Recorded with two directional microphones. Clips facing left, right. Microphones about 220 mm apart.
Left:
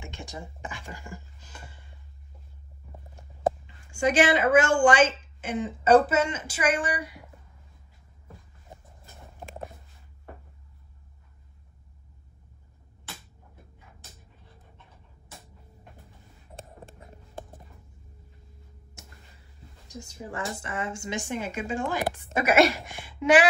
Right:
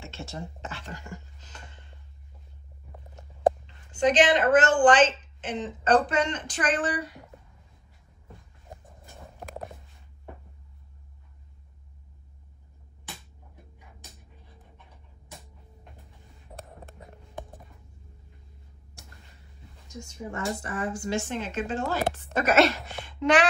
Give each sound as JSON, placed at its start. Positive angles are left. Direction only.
{"t": 0.0, "sound": "speech", "side_deg": 15}
{"t": 3.6, "sound": "a woman's voice", "side_deg": 10}
{"t": 20.2, "sound": "speech", "side_deg": 30}